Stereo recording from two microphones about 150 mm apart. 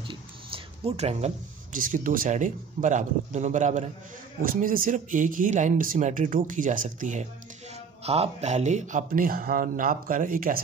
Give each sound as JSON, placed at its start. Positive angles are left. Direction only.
{"t": 0.1, "sound": "a sound", "side_deg": -40}
{"t": 1.7, "sound": "speech", "side_deg": -65}
{"t": 4.4, "sound": "speech", "side_deg": -65}
{"t": 8.0, "sound": "speech", "side_deg": -45}